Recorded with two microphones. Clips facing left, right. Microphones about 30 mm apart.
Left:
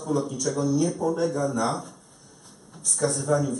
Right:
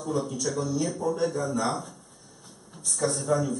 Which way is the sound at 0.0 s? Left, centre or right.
Centre.